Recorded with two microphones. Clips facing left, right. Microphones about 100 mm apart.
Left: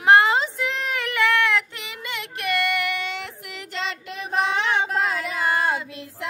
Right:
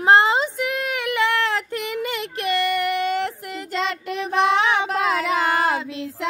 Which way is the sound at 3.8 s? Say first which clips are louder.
Right 5 dB; 60° right (ahead or behind).